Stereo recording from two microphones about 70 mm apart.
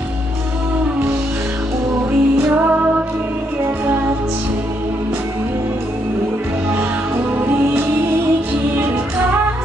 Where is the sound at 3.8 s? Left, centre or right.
Right.